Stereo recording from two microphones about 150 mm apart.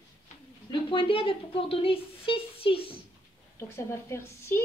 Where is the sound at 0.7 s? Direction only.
35° left (ahead or behind).